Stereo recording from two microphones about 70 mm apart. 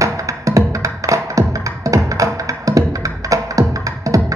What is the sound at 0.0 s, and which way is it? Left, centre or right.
Music, right.